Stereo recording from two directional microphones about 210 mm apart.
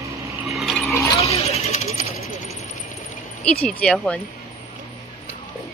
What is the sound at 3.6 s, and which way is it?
Speech, 5° left (ahead or behind).